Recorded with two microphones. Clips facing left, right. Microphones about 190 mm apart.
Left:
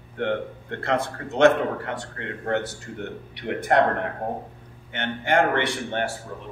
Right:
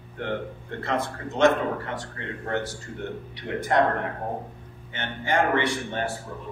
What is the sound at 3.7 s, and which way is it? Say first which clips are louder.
Speech: left 2 dB; 60° left (ahead or behind).